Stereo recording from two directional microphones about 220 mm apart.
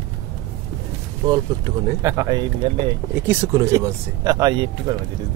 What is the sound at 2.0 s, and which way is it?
Speech, 15° right (ahead or behind).